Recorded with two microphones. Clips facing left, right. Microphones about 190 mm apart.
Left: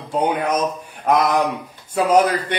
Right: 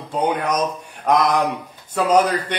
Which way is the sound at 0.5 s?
5° left (ahead or behind).